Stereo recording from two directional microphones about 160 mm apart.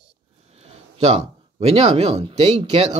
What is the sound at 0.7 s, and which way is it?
Speech, 40° right (ahead or behind).